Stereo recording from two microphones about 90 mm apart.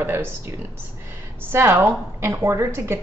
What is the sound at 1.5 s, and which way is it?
A woman's voice, 30° right (ahead or behind).